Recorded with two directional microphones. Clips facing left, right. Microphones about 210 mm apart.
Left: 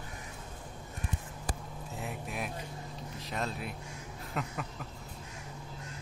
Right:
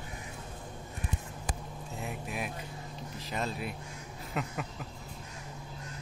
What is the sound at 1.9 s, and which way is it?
Vehicle, centre (ahead or behind).